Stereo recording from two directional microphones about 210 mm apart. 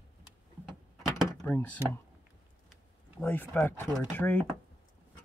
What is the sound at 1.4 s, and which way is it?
Speech, 5° left (ahead or behind).